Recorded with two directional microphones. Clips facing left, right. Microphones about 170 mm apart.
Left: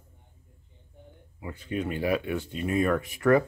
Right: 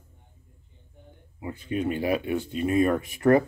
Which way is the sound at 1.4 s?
20° right (ahead or behind).